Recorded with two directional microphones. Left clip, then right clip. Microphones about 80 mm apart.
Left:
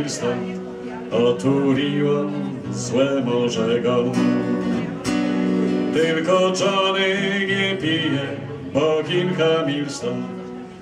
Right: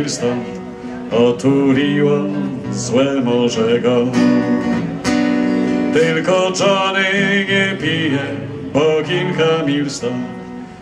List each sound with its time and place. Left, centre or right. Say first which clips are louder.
1.1 s music: right 5 dB; right
2.9 s music: right 4 dB; right